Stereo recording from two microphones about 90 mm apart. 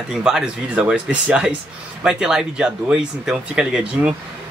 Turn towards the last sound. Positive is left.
turn(degrees=-10)  # may be behind; listen again after turning